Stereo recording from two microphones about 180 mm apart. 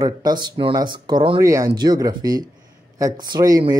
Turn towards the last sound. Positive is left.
turn(degrees=-20)  # may be behind; listen again after turning